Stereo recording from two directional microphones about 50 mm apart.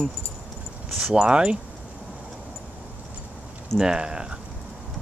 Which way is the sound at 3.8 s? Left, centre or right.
Centre.